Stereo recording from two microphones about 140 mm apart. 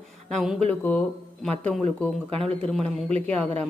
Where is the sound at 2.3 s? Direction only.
40° right (ahead or behind).